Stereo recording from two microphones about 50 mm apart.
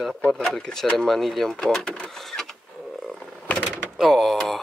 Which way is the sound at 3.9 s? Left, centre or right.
Centre.